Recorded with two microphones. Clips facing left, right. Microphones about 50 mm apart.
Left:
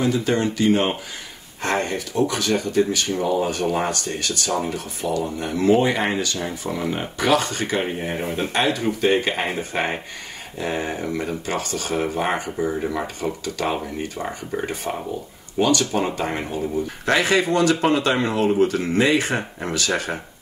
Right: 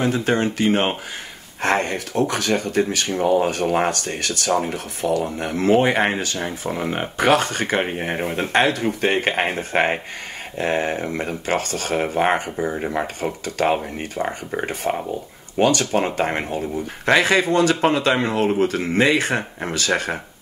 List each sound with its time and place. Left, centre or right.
0.0 s speech: right
12.5 s speech: right
12.9 s speech: right